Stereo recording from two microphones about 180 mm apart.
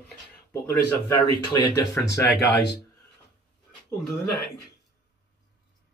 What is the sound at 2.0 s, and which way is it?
Speech, 10° left (ahead or behind).